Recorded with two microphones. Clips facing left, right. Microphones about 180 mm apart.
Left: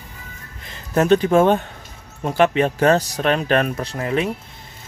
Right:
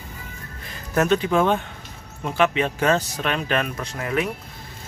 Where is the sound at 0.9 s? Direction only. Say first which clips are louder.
Left 5 dB; 35° left (ahead or behind).